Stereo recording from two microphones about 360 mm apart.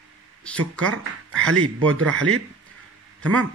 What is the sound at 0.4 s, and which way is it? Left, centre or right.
Speech, centre.